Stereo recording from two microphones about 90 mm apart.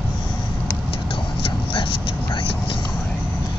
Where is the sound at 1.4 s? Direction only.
80° left.